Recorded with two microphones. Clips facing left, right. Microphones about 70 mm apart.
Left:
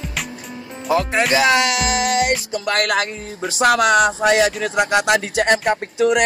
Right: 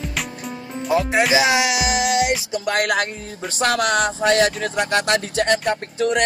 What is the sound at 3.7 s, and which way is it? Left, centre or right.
Music, left.